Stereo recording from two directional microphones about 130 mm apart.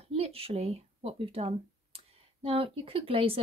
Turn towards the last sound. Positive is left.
turn(degrees=-45)  # may be behind; listen again after turning